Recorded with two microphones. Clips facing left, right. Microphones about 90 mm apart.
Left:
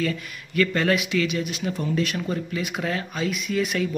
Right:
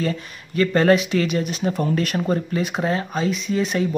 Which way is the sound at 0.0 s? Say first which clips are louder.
Right 2 dB; 30° right (ahead or behind).